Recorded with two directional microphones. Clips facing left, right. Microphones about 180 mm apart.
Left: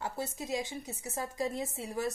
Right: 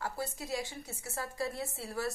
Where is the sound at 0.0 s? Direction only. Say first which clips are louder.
Left 1 dB; 20° left (ahead or behind).